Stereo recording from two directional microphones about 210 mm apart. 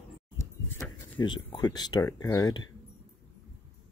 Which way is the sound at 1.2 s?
20° left (ahead or behind).